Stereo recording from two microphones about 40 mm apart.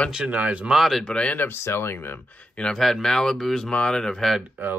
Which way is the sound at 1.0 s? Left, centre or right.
Left.